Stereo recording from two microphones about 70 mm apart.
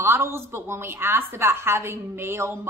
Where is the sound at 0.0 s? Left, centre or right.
Right.